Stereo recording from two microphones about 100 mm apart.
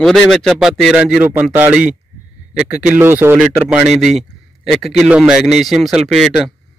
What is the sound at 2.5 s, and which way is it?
Speech, 15° right (ahead or behind).